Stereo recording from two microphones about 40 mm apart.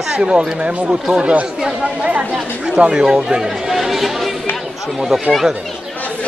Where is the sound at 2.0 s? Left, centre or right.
Right; by 5.2 s centre.